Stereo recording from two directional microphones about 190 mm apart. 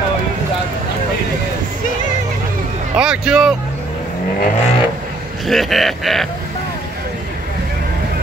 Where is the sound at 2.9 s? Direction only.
5° right (ahead or behind).